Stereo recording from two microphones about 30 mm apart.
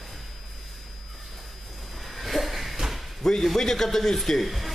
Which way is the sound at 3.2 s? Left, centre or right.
Centre.